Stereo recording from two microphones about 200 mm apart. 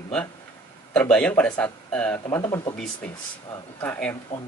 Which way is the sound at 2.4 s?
20° left (ahead or behind).